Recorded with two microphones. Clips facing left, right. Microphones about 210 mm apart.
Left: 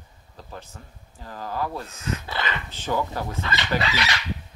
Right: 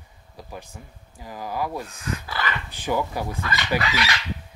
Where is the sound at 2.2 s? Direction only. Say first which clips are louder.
Even; 25° left (ahead or behind).